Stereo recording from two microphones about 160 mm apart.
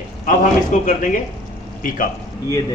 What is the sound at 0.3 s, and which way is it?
Speech, 55° left (ahead or behind).